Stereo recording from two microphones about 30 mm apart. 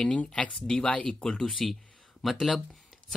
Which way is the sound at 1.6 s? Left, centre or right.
Centre.